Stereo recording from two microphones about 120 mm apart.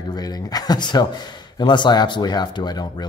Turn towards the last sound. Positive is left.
turn(degrees=35)  # may be behind; listen again after turning